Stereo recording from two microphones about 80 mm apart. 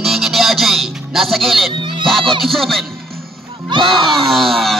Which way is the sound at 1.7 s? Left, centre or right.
Right.